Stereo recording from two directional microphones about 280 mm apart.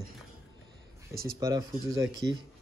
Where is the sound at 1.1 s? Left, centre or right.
Right.